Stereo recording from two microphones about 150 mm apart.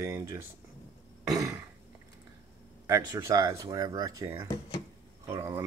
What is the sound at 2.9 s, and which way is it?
Speech, 20° right (ahead or behind).